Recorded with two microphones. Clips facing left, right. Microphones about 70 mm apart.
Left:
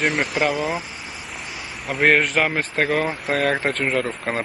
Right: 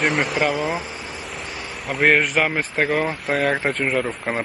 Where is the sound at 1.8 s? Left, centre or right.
Centre.